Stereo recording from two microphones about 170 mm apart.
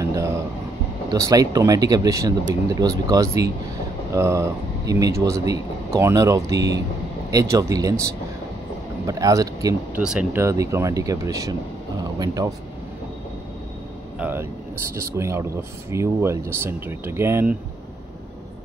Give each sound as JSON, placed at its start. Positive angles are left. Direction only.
{"t": 0.0, "sound": "a sound", "side_deg": -20}
{"t": 1.1, "sound": "a man's voice", "side_deg": -20}
{"t": 9.9, "sound": "a man's voice", "side_deg": -5}
{"t": 10.4, "sound": "speech", "side_deg": -20}
{"t": 12.0, "sound": "a sound", "side_deg": -20}
{"t": 14.1, "sound": "a man's voice", "side_deg": -10}